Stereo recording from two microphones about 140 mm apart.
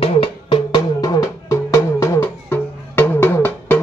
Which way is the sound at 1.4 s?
20° left (ahead or behind).